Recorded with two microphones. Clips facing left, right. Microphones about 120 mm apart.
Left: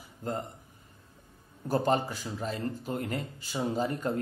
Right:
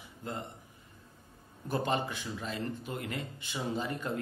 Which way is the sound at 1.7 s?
40° left (ahead or behind).